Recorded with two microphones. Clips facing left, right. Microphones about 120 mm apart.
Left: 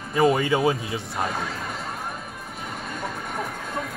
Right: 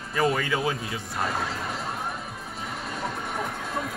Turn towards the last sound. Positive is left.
turn(degrees=0)  # may be behind; listen again after turning